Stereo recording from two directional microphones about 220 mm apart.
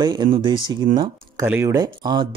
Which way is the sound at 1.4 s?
10° right (ahead or behind).